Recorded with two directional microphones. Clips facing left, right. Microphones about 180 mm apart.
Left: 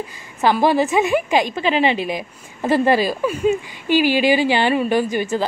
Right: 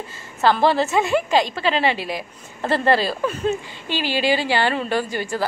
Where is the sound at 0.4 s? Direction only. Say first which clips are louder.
Left 1 dB; 15° left (ahead or behind).